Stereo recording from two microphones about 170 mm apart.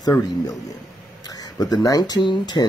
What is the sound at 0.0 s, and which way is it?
Speech, 20° left (ahead or behind).